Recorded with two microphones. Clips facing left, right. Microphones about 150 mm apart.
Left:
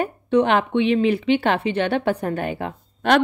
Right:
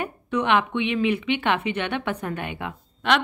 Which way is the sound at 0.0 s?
35° left (ahead or behind).